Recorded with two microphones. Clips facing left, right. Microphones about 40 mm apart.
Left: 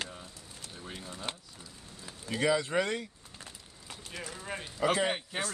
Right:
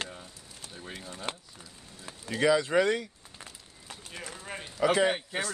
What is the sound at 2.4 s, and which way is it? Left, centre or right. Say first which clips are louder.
Speech: right 4 dB; right.